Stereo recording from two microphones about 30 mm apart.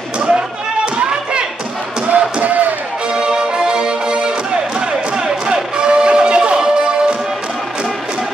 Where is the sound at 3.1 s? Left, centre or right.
Right.